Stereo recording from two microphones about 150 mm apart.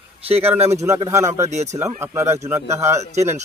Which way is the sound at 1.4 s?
50° right (ahead or behind).